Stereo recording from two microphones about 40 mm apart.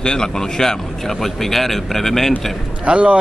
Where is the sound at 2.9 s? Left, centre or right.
Right.